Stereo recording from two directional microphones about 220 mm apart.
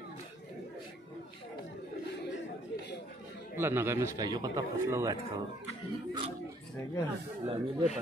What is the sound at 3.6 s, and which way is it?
A man's voice, 10° right (ahead or behind).